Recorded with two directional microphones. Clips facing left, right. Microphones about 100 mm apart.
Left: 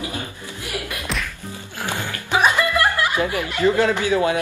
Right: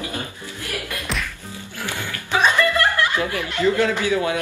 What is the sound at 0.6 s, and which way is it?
Music, 15° left (ahead or behind).